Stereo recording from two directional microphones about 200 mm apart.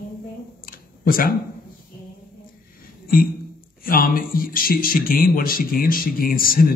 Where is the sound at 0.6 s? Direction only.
45° left (ahead or behind).